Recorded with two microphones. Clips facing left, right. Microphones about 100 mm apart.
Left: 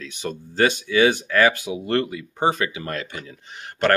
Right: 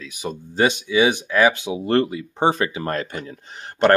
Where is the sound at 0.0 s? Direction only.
10° right (ahead or behind); by 3.3 s 40° right (ahead or behind).